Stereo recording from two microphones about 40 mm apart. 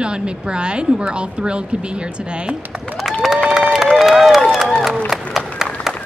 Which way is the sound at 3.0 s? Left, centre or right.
Centre.